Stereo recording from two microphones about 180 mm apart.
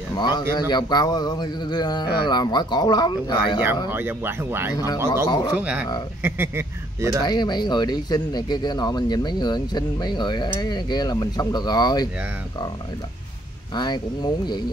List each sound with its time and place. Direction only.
0.1 s speech: 25° left (ahead or behind)
3.9 s speech: 10° right (ahead or behind)
5.1 s speech: 20° left (ahead or behind)
5.6 s speech: 10° right (ahead or behind)
7.2 s speech: 20° left (ahead or behind)
13.7 s speech: 25° left (ahead or behind)